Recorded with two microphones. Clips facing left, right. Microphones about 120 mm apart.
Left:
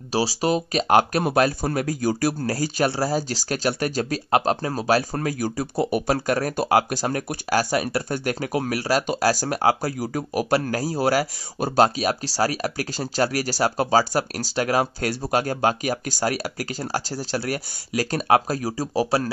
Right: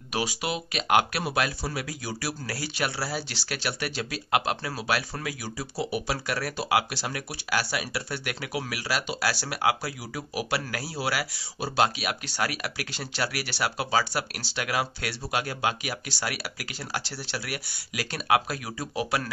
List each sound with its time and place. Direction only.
0.1 s speech: 35° left (ahead or behind)